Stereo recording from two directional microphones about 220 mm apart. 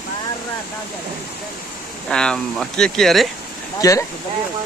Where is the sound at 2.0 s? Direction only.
5° left (ahead or behind).